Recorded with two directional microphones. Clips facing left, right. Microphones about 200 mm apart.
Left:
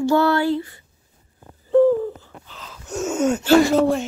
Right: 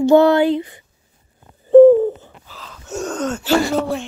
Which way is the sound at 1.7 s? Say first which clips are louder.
Right 8 dB; 20° right (ahead or behind).